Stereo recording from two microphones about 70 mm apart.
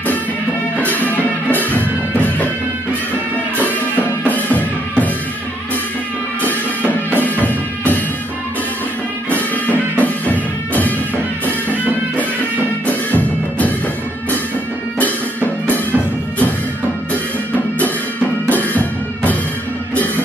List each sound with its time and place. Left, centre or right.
1.0 s music: left
4.3 s music: left
7.2 s music: left
9.3 s music: left
12.8 s music: left
18.5 s music: left